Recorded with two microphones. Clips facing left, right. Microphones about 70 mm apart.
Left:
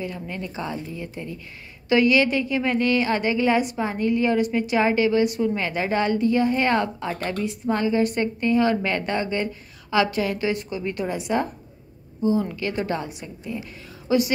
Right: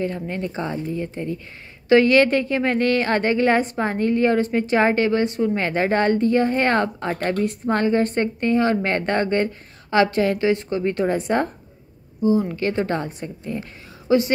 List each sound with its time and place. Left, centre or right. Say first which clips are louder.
0.0 s a woman's voice: right 5 dB; right
1.9 s a woman's voice: right 4 dB; right
12.5 s a woman's voice: right 4 dB; right